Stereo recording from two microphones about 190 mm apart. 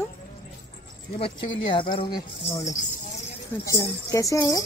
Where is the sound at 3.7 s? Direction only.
15° left (ahead or behind).